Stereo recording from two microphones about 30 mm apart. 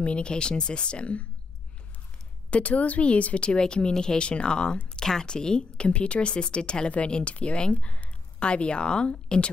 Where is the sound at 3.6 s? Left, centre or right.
Left.